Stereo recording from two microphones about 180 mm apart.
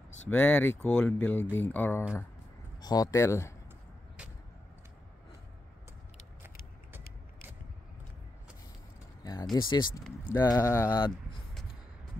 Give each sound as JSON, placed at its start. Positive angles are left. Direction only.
{"t": 0.3, "sound": "speech", "side_deg": 10}
{"t": 2.8, "sound": "speech", "side_deg": 20}
{"t": 9.2, "sound": "speech", "side_deg": 20}